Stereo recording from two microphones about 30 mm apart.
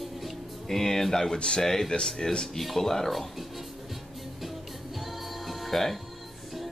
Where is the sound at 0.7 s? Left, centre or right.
Centre.